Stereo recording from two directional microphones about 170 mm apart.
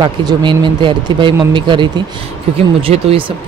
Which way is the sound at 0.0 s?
25° right (ahead or behind).